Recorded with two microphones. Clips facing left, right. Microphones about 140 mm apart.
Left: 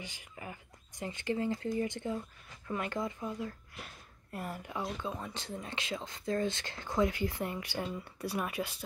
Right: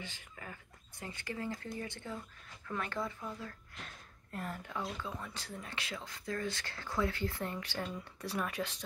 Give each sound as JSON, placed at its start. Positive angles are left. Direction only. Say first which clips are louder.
{"t": 0.0, "sound": "speech", "louder": "left 3 dB", "side_deg": 15}